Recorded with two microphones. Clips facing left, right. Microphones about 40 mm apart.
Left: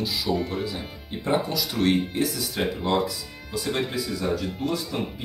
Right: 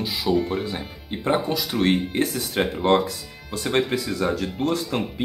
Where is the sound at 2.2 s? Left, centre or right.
Right.